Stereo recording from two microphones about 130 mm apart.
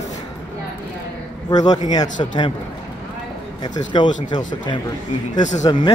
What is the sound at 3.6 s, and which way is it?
A man's voice, 35° left (ahead or behind).